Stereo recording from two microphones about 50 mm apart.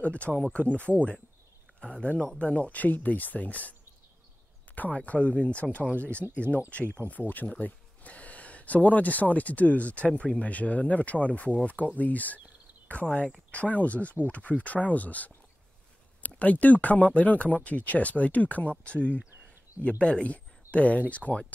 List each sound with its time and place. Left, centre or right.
0.0 s speech: left
4.7 s speech: left
21.2 s speech: centre